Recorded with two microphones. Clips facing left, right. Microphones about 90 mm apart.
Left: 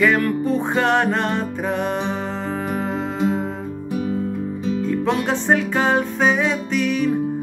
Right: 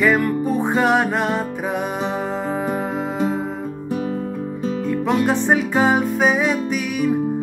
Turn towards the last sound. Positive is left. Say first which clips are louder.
# left 1 dB
turn(degrees=-10)  # may be behind; listen again after turning